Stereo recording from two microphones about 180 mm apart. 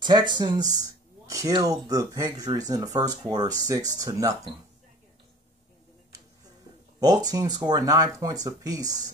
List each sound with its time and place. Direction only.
0.0 s speech: 25° right (ahead or behind)
7.0 s speech: 20° right (ahead or behind)